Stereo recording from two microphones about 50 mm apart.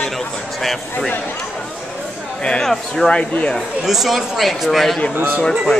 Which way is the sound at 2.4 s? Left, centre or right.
Centre.